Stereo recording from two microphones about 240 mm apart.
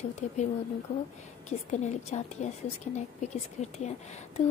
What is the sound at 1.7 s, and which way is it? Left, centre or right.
A woman's voice, left.